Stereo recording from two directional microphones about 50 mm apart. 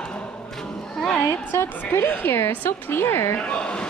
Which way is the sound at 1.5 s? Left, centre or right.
Left.